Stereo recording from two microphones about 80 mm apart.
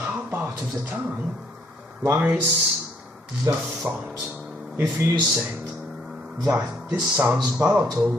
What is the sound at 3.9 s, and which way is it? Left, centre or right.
Speech, centre.